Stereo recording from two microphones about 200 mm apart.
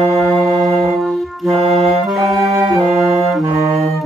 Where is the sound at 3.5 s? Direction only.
15° right (ahead or behind).